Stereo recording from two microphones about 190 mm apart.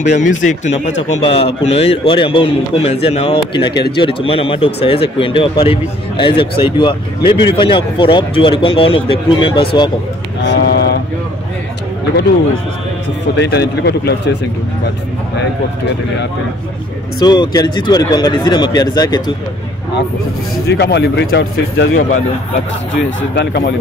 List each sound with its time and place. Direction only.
0.0 s speech: 40° left (ahead or behind)
10.4 s a sound: 60° left (ahead or behind)
13.4 s speech: 65° left (ahead or behind)
17.2 s speech: 20° left (ahead or behind)
20.5 s speech: 65° left (ahead or behind)
23.0 s speech: 65° left (ahead or behind)